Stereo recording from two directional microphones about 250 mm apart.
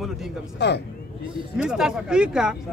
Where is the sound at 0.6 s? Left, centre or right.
Left.